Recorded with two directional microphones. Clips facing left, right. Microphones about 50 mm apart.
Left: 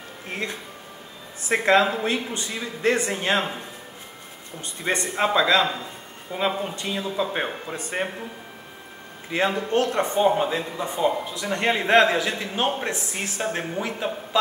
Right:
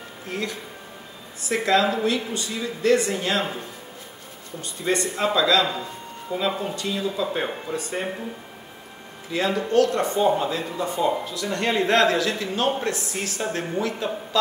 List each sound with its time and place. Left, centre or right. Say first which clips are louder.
0.3 s speech: right 1 dB; left
4.8 s speech: even; left
9.3 s speech: right 1 dB; left